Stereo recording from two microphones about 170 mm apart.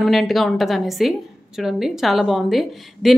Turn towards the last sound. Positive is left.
turn(degrees=0)  # may be behind; listen again after turning